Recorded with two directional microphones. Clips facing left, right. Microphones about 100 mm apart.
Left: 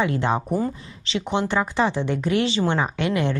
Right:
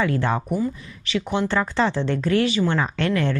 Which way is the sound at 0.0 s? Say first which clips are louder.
Even; 20° left (ahead or behind).